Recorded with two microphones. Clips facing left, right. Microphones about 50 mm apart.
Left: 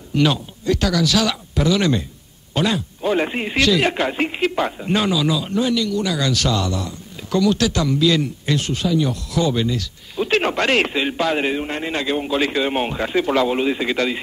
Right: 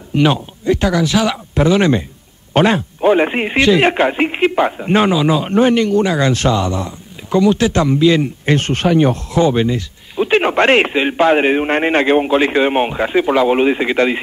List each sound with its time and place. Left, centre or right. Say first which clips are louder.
0.1 s speech: right 4 dB; right
8.5 s speech: right 6 dB; right
10.5 s speech: right 6 dB; right
13.5 s speech: right 6 dB; right